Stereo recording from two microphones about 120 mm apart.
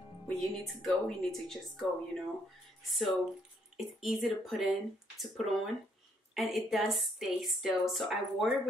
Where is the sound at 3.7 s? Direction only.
5° right (ahead or behind).